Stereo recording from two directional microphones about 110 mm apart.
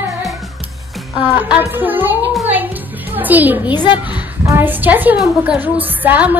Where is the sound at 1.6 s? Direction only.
20° right (ahead or behind).